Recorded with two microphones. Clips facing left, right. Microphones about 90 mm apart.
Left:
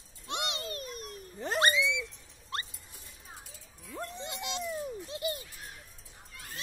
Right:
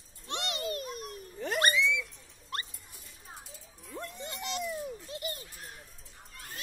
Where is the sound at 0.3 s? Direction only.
20° left (ahead or behind).